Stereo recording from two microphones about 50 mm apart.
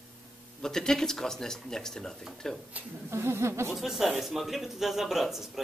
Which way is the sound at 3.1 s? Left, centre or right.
Right.